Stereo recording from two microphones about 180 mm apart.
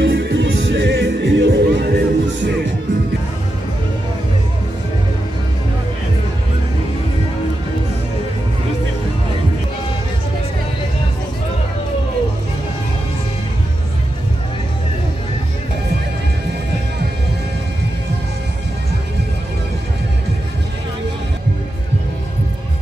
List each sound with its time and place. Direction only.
0.0 s music: 75° right (ahead or behind)